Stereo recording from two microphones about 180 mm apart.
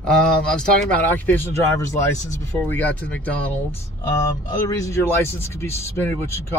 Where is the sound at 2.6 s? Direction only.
10° left (ahead or behind).